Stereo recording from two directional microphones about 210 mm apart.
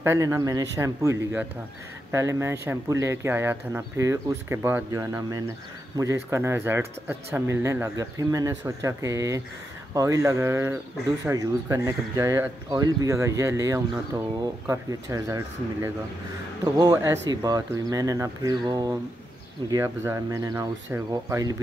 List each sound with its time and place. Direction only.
0.0 s speech: 15° right (ahead or behind)